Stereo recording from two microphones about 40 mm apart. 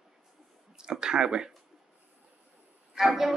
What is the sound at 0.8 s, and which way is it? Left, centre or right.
Speech, centre.